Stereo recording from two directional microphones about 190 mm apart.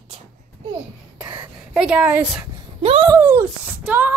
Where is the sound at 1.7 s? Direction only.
5° right (ahead or behind).